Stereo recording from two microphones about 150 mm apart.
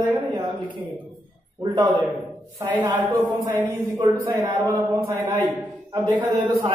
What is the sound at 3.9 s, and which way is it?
A man's voice, 20° right (ahead or behind).